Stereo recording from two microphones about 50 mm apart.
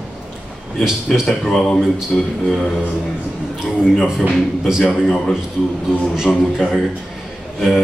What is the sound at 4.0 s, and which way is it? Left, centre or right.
A man's voice, centre.